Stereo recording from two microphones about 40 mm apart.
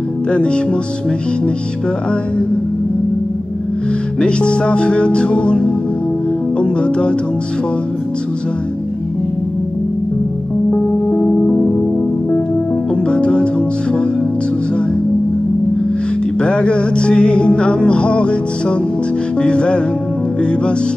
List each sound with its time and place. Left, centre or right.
0.3 s music: left
4.2 s music: left
11.1 s music: left
12.9 s music: left
16.3 s music: left